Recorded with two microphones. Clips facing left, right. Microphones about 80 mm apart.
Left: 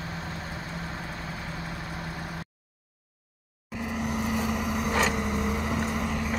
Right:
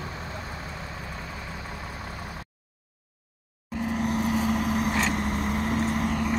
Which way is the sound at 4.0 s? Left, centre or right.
Centre.